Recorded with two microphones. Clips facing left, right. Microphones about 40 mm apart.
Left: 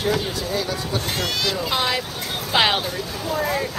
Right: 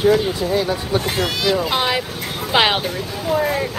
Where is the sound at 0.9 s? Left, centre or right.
Centre.